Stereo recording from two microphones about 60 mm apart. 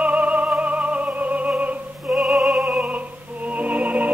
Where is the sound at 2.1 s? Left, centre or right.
Centre.